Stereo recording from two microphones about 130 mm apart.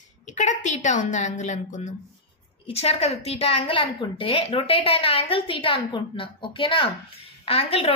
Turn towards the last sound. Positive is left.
turn(degrees=50)  # may be behind; listen again after turning